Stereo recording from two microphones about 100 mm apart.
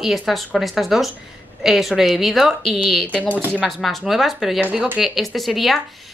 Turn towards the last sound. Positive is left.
turn(degrees=0)  # may be behind; listen again after turning